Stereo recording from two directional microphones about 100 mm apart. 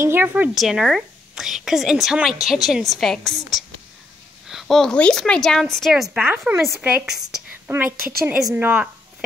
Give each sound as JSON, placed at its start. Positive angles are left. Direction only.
{"t": 0.0, "sound": "a woman's voice", "side_deg": -20}
{"t": 0.6, "sound": "a woman's voice", "side_deg": -5}
{"t": 6.1, "sound": "speech", "side_deg": -20}
{"t": 7.1, "sound": "a woman's voice", "side_deg": -5}
{"t": 7.6, "sound": "a woman's voice", "side_deg": -20}